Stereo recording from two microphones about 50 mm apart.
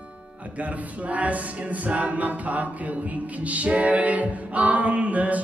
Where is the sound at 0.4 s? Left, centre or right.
Right.